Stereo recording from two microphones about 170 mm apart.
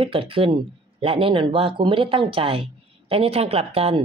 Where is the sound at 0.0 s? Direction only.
30° right (ahead or behind).